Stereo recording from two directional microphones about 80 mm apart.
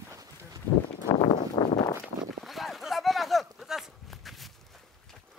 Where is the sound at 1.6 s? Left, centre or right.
Left.